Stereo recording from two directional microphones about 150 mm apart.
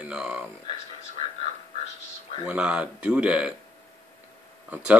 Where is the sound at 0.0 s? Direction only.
5° right (ahead or behind).